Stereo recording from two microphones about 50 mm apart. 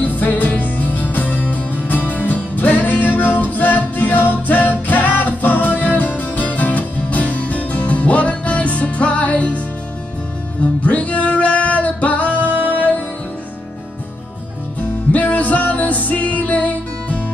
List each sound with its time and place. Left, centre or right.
0.0 s music: left
10.8 s music: left
12.4 s music: right
15.1 s music: left